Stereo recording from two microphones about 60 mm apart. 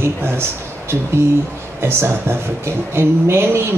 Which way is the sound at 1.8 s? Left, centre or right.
Right.